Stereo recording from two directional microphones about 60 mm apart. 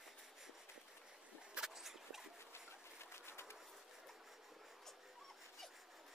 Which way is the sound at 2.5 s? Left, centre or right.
Left.